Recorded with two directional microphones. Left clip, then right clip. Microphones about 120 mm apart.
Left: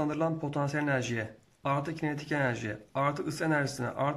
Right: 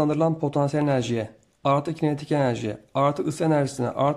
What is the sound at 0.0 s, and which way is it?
A man's voice, 35° right (ahead or behind).